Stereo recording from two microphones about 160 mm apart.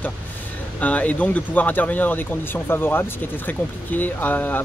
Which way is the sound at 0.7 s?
10° left (ahead or behind).